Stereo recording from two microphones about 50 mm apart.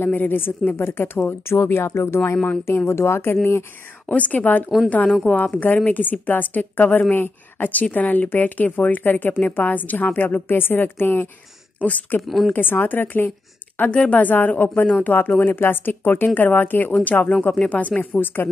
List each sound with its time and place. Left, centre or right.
0.0 s speech: left
1.5 s speech: left
2.3 s speech: left
2.9 s speech: left
4.1 s speech: left
11.8 s speech: left
12.2 s a woman's voice: centre
12.5 s speech: left
13.7 s speech: left
14.2 s speech: left